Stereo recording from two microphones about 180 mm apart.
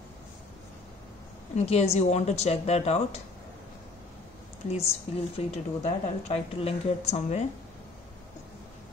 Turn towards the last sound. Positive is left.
turn(degrees=35)  # may be behind; listen again after turning